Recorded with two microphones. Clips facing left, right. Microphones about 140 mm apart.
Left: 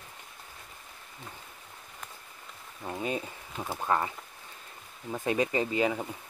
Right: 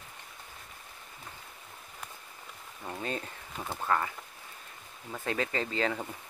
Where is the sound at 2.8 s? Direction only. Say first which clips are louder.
Left 3 dB; 15° left (ahead or behind).